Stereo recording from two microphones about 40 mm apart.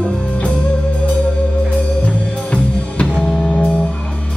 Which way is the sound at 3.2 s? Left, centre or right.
Left.